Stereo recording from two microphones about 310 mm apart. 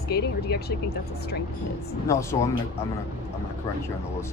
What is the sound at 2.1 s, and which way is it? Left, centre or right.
Speech, centre.